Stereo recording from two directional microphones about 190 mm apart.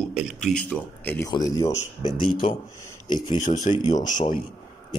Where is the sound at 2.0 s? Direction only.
30° left (ahead or behind).